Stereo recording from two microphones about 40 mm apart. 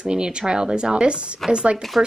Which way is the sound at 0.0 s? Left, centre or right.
Right.